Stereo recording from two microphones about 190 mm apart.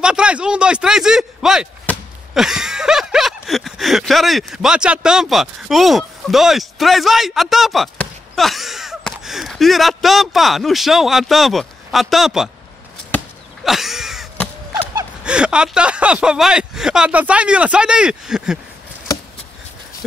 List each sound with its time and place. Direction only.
0.0 s speech: 5° right (ahead or behind)
13.7 s a sound: centre (ahead or behind)
15.2 s speech: 5° right (ahead or behind)